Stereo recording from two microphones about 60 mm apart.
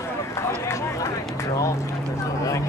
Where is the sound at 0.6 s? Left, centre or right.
Left.